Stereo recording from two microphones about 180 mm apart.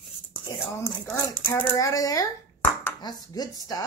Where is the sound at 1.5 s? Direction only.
20° left (ahead or behind).